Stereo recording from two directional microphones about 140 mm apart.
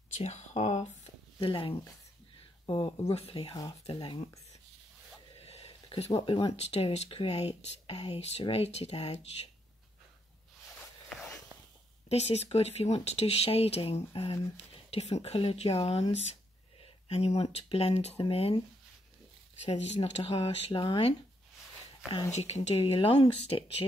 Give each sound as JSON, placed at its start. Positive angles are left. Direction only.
{"t": 0.2, "sound": "a sound", "side_deg": 55}
{"t": 1.5, "sound": "speech", "side_deg": 40}
{"t": 3.1, "sound": "speech", "side_deg": 45}
{"t": 5.4, "sound": "a sound", "side_deg": 45}
{"t": 6.6, "sound": "speech", "side_deg": 45}
{"t": 11.1, "sound": "a sound", "side_deg": 0}
{"t": 12.1, "sound": "speech", "side_deg": 50}
{"t": 19.6, "sound": "speech", "side_deg": 55}
{"t": 22.3, "sound": "speech", "side_deg": 50}